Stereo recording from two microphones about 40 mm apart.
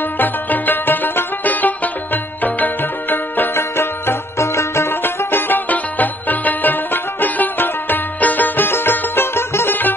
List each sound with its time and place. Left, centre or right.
0.2 s music: left
3.5 s music: left
5.7 s music: left